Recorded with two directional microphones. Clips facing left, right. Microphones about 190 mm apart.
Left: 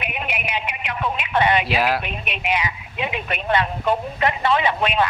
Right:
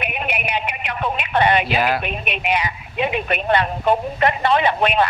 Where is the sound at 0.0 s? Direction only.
55° right (ahead or behind).